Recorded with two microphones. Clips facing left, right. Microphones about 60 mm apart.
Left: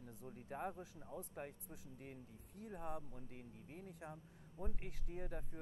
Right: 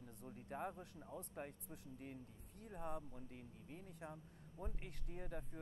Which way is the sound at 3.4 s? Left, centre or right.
Left.